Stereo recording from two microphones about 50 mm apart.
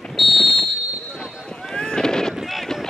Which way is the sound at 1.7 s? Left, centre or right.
Centre.